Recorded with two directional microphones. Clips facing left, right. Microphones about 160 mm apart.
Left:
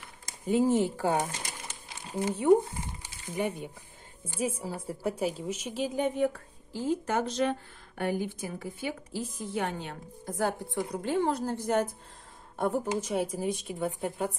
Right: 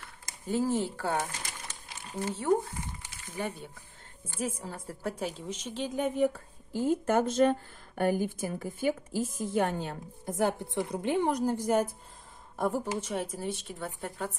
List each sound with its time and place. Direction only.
0.2 s a woman's voice: 15° left (ahead or behind); by 6.2 s centre (ahead or behind)
6.9 s a woman's voice: 50° right (ahead or behind)
10.2 s a woman's voice: 25° right (ahead or behind)
12.5 s speech: centre (ahead or behind)
12.8 s a woman's voice: 20° left (ahead or behind)